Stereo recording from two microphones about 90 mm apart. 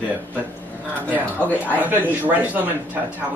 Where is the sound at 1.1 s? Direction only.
20° right (ahead or behind).